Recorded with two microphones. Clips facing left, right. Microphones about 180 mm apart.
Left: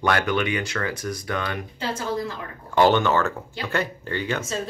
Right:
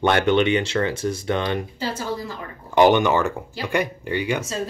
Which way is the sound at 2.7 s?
15° right (ahead or behind).